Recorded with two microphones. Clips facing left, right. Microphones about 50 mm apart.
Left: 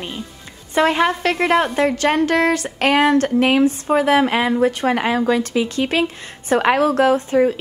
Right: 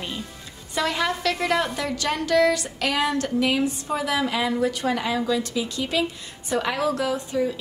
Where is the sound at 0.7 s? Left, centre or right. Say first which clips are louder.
Left 8 dB; left.